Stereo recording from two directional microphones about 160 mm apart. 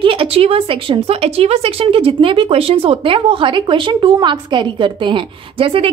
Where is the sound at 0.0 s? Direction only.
35° right (ahead or behind).